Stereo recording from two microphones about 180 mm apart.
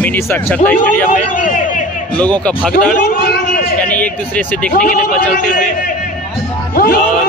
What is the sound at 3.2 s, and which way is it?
Chatter, 60° left (ahead or behind).